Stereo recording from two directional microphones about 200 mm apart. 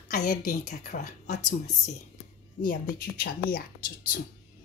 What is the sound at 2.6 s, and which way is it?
Speech, 45° left (ahead or behind).